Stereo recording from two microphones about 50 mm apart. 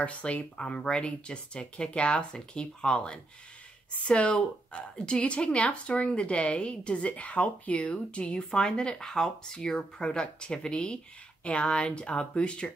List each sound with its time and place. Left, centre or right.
0.0 s a woman's voice: left